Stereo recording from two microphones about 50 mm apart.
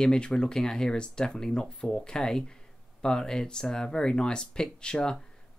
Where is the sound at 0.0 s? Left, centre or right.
Centre.